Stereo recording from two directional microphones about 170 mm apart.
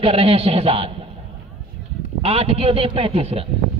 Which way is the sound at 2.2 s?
35° right (ahead or behind).